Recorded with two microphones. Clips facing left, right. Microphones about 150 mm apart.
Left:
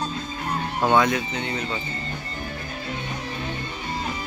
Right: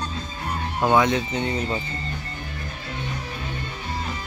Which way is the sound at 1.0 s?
20° right (ahead or behind).